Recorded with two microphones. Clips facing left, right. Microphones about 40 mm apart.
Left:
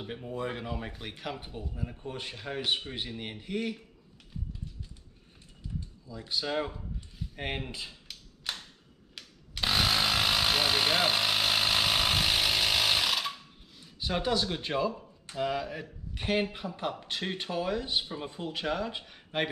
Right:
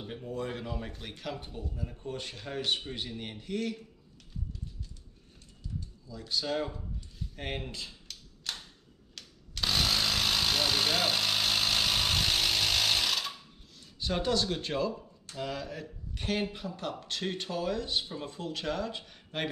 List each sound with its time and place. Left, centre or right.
0.0 s speech: centre
5.8 s a sound: centre
9.1 s chainsaw: centre
13.9 s speech: centre